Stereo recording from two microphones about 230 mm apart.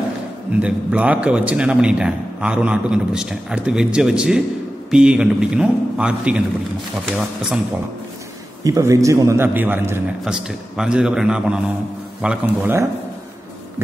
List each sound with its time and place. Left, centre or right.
0.6 s a man's voice: centre
8.6 s a man's voice: centre